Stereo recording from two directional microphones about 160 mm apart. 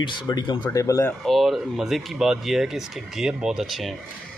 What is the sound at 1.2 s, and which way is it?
Speech, centre (ahead or behind).